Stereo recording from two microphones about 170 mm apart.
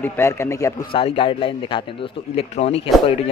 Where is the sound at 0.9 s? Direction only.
30° left (ahead or behind).